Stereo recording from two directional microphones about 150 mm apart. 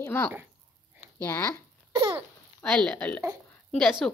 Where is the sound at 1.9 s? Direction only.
30° right (ahead or behind).